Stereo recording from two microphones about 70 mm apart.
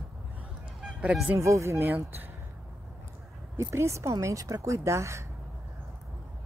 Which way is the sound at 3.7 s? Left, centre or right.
Right.